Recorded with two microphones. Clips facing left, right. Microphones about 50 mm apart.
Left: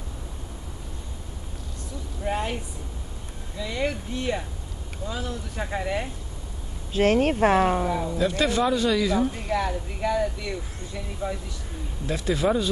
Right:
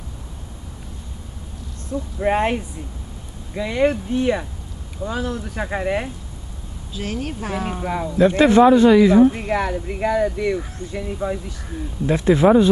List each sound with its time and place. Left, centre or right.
2.1 s speech: right
3.5 s speech: right
5.6 s speech: right
6.9 s speech: left
7.9 s a man's voice: right
9.5 s a man's voice: right